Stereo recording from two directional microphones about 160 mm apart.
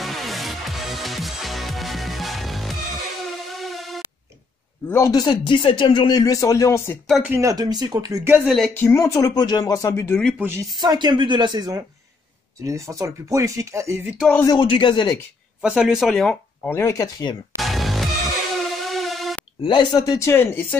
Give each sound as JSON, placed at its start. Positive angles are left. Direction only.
{"t": 0.0, "sound": "music", "side_deg": 0}
{"t": 4.8, "sound": "speech", "side_deg": 15}
{"t": 7.1, "sound": "speech", "side_deg": 0}
{"t": 7.3, "sound": "a woman's voice", "side_deg": -20}
{"t": 8.5, "sound": "speech", "side_deg": 0}
{"t": 8.7, "sound": "speech", "side_deg": 20}
{"t": 10.7, "sound": "a woman's voice", "side_deg": -25}
{"t": 14.4, "sound": "speech", "side_deg": 25}
{"t": 15.6, "sound": "speech", "side_deg": -5}
{"t": 17.6, "sound": "music", "side_deg": 0}
{"t": 19.6, "sound": "speech", "side_deg": 30}